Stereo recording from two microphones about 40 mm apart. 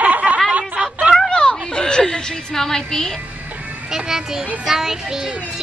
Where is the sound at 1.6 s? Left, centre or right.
Left.